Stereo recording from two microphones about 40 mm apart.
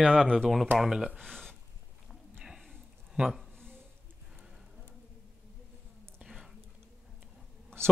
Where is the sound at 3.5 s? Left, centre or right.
Right.